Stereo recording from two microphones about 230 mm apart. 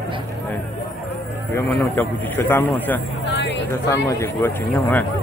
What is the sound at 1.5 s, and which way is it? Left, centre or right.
A man's voice, centre.